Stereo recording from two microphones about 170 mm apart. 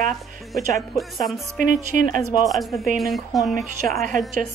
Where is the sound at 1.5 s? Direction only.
50° right (ahead or behind).